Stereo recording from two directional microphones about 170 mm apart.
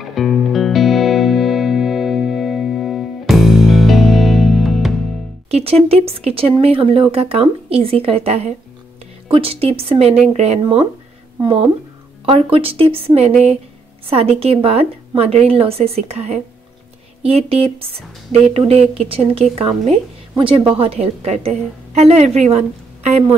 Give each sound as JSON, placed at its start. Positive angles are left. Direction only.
{"t": 0.0, "sound": "music", "side_deg": 0}
{"t": 5.5, "sound": "a woman's voice", "side_deg": -35}
{"t": 12.3, "sound": "a woman's voice", "side_deg": -35}